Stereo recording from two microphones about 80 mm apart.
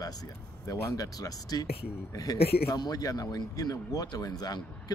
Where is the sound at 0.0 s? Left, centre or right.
Left.